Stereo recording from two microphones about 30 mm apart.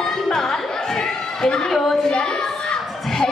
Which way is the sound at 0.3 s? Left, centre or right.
Centre.